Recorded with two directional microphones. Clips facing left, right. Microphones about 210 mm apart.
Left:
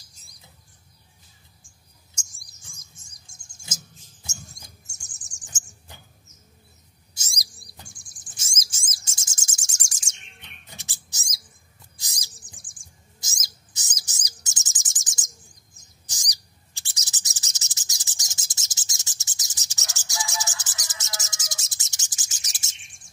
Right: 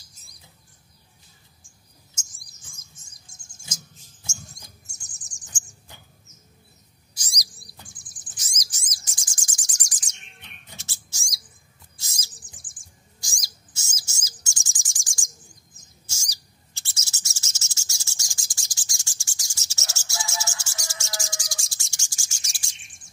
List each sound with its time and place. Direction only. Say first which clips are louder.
0.1 s bird: right 1 dB; centre (ahead or behind)
2.1 s chirp: right 1 dB; centre (ahead or behind)
7.2 s bird: right 1 dB; 25° left (ahead or behind)
7.5 s bird vocalization: left 1 dB; centre (ahead or behind)
8.4 s bird: left 2 dB; 25° left (ahead or behind)
12.4 s bird: even; centre (ahead or behind)
13.2 s bird: even; 20° left (ahead or behind)